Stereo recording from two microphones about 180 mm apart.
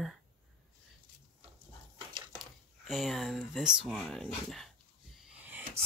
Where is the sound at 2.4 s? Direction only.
Centre (ahead or behind).